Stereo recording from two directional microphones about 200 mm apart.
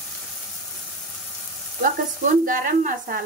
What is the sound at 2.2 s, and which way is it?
Speech, 40° right (ahead or behind).